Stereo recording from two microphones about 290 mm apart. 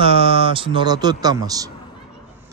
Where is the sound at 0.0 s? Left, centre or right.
Centre.